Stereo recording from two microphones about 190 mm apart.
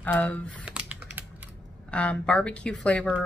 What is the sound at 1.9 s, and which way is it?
A woman's voice, 5° left (ahead or behind).